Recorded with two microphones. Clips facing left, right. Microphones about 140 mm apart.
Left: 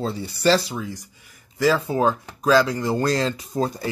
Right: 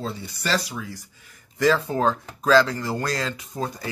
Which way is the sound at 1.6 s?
10° left (ahead or behind).